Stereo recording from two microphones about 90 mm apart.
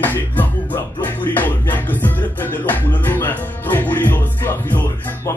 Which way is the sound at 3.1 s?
20° left (ahead or behind).